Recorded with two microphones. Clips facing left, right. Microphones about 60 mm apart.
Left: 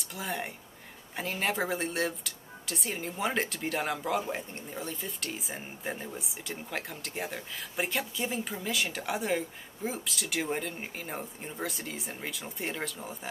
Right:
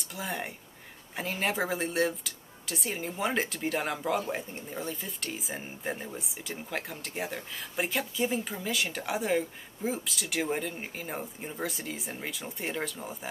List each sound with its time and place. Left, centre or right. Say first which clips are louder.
0.0 s speech: even; centre